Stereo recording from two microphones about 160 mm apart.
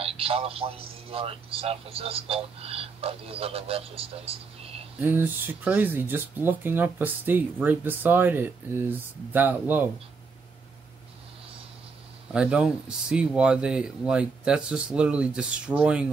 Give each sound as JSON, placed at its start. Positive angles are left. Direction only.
{"t": 0.0, "sound": "a man's voice", "side_deg": -35}
{"t": 5.0, "sound": "speech", "side_deg": -10}
{"t": 12.3, "sound": "speech", "side_deg": -5}